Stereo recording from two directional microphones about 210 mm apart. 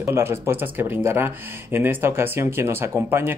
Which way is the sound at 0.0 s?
10° right (ahead or behind).